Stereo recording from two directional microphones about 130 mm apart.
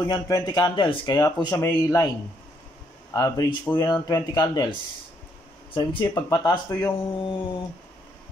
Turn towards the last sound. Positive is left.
turn(degrees=35)  # may be behind; listen again after turning